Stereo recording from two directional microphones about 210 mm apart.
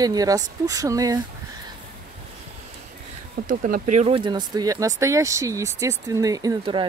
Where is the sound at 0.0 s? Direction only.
15° right (ahead or behind).